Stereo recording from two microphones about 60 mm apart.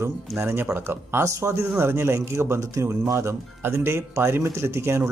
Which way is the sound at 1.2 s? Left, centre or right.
Right.